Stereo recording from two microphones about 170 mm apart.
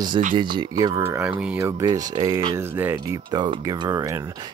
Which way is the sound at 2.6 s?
10° right (ahead or behind).